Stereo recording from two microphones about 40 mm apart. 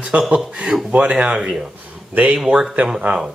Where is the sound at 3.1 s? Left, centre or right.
Right.